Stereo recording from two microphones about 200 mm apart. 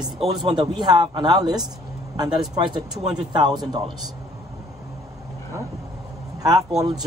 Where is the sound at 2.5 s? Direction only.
25° right (ahead or behind).